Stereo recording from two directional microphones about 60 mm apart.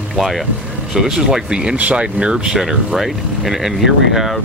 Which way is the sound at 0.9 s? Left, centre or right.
Centre.